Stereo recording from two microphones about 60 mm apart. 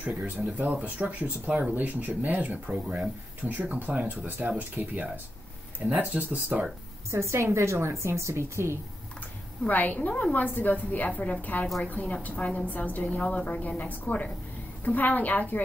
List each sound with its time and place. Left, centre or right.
0.0 s speech: right
7.1 s a woman's voice: right
9.7 s a woman's voice: left